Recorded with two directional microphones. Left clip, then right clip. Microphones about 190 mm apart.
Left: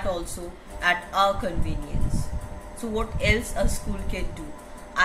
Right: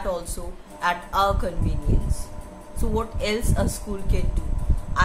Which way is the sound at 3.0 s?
20° right (ahead or behind).